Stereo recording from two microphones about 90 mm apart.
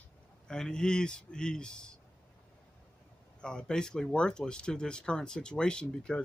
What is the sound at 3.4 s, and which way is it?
Speech, 10° left (ahead or behind).